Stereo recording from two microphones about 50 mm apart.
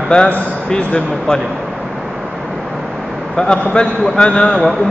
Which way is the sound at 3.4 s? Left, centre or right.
Centre.